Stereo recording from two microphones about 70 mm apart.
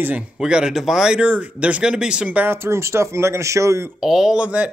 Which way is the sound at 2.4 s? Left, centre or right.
Right.